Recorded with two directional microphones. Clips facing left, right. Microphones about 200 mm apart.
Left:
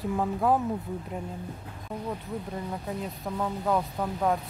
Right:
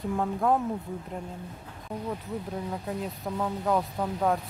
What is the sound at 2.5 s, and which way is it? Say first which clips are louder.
Speech: right 2 dB; centre (ahead or behind).